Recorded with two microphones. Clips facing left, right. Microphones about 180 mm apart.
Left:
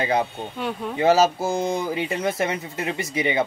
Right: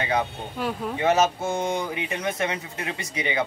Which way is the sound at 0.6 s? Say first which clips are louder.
Even; centre (ahead or behind).